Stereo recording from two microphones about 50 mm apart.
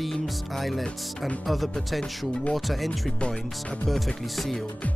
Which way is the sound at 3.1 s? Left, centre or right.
Centre.